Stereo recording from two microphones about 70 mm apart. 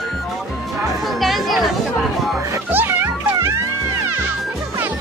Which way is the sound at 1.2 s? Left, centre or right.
Centre.